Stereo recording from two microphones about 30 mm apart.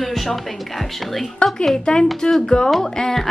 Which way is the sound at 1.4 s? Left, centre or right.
Left.